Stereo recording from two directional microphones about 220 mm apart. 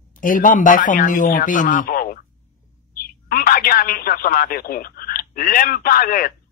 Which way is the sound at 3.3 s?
40° left (ahead or behind).